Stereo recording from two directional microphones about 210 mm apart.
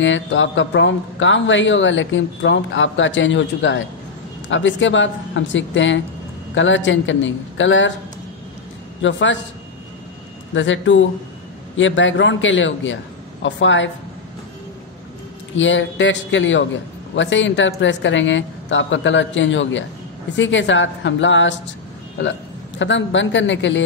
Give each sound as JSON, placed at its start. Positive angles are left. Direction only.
{"t": 0.0, "sound": "speech", "side_deg": 65}
{"t": 9.0, "sound": "speech", "side_deg": 60}
{"t": 10.5, "sound": "speech", "side_deg": 65}
{"t": 15.5, "sound": "speech", "side_deg": 65}